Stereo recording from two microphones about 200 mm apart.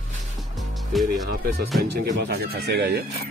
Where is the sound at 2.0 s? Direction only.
50° right (ahead or behind).